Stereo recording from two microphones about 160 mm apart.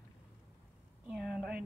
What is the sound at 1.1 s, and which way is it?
Speech, 5° right (ahead or behind).